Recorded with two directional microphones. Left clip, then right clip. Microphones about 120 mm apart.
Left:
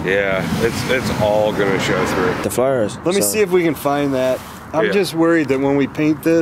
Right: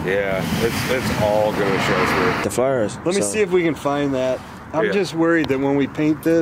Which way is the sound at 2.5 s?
10° left (ahead or behind).